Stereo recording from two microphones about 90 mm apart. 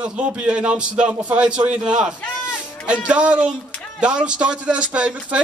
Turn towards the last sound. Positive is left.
turn(degrees=-10)  # may be behind; listen again after turning